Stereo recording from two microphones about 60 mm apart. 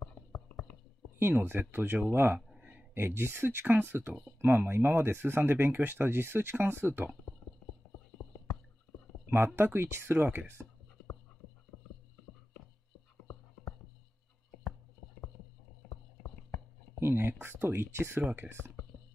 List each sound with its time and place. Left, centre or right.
0.3 s a sound: left
1.3 s speech: right
9.6 s speech: right
15.8 s clip-clop: left
17.0 s speech: right